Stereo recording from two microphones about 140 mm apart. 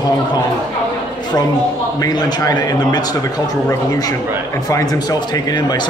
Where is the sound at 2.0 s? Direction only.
25° left (ahead or behind).